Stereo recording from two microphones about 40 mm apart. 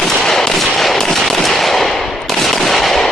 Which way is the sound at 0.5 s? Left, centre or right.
Centre.